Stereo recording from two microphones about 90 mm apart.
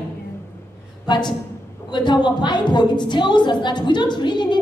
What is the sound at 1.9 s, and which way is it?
A woman's voice, 55° left (ahead or behind).